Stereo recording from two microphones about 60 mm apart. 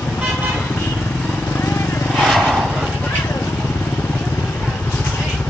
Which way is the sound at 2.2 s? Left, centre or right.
Centre.